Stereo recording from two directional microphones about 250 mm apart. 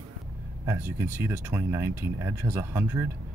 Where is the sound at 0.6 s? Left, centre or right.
Centre.